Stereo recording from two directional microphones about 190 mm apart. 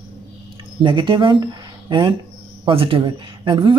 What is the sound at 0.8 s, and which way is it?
Speech, 25° right (ahead or behind).